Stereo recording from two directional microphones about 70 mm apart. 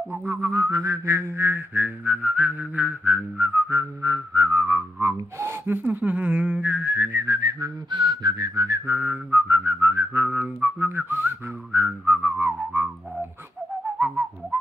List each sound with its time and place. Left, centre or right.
0.3 s whistling: right
4.0 s whistling: right
5.1 s speech: right
7.2 s whistling: right
8.8 s whistling: right
13.9 s whistling: right